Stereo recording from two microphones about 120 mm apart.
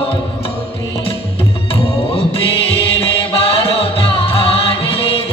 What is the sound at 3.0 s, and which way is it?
Music, 55° left (ahead or behind).